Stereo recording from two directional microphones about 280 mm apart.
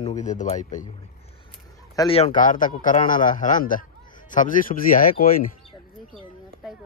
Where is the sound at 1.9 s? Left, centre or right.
Centre.